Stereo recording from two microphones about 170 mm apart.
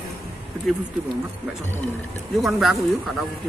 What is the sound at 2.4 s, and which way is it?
Speech, centre (ahead or behind).